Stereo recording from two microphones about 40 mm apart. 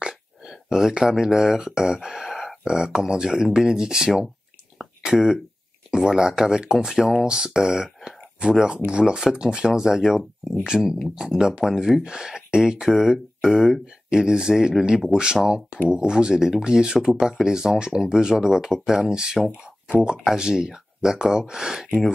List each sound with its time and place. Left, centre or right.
0.0 s speech: centre
2.0 s speech: centre
2.7 s speech: centre
11.6 s speech: centre